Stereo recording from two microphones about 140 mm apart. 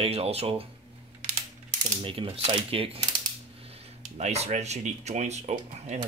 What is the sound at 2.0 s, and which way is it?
Speech, 40° right (ahead or behind).